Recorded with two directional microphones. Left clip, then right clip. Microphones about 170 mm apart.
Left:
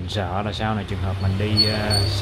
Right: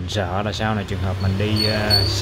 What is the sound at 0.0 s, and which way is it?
Speech, 10° right (ahead or behind).